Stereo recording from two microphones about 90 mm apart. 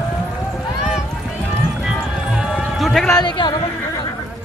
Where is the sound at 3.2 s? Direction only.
55° left (ahead or behind).